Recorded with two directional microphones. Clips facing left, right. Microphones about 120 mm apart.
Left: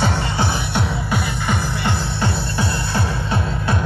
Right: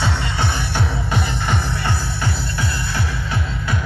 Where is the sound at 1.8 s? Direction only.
25° left (ahead or behind).